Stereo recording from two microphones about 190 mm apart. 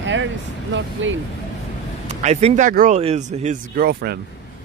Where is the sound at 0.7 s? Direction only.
85° right.